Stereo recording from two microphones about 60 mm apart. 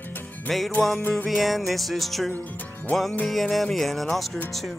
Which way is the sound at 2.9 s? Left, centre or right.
Centre.